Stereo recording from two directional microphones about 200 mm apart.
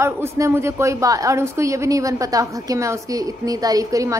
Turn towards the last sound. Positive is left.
turn(degrees=-15)  # may be behind; listen again after turning